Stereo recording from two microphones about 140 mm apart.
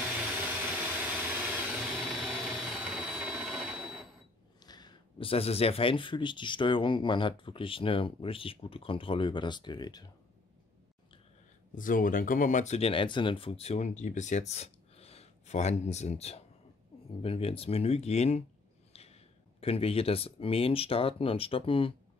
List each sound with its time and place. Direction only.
0.4 s vehicle: 10° right (ahead or behind)
4.6 s speech: 30° left (ahead or behind)
11.7 s speech: 70° left (ahead or behind); by 21.9 s 40° left (ahead or behind)